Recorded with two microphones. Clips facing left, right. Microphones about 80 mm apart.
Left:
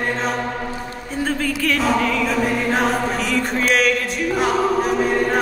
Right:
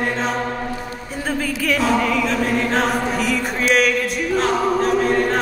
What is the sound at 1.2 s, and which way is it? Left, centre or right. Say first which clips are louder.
Choir: even; centre.